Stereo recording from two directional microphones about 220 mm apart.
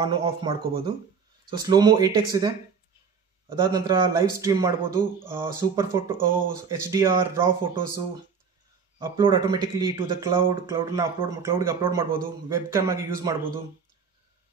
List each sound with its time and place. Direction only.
0.0 s a man's voice: 20° right (ahead or behind)
9.1 s speech: 20° right (ahead or behind)
10.7 s a man's voice: 10° right (ahead or behind)